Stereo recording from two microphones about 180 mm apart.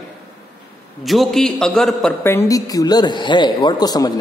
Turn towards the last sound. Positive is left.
turn(degrees=20)  # may be behind; listen again after turning